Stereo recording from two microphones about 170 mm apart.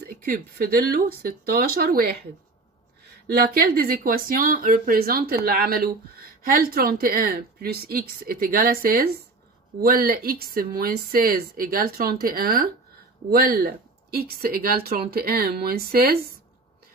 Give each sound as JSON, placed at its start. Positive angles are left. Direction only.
{"t": 0.0, "sound": "speech", "side_deg": -65}
{"t": 3.3, "sound": "speech", "side_deg": -65}